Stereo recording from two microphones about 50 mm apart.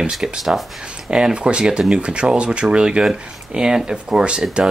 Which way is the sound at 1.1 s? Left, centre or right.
Centre.